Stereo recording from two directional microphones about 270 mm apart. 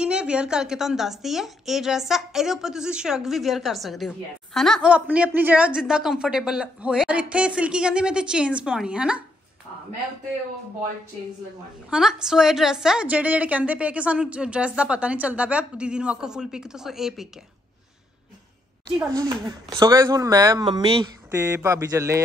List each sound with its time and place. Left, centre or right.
0.0 s a woman's voice: centre
11.9 s a woman's voice: centre
19.8 s speech: centre